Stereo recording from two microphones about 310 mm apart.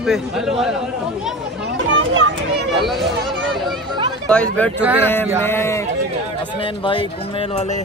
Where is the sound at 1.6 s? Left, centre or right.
Right.